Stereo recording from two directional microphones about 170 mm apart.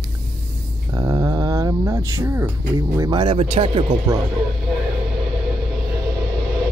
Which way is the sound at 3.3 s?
35° right (ahead or behind).